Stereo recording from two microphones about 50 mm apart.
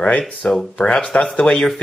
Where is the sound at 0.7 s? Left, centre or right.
Left.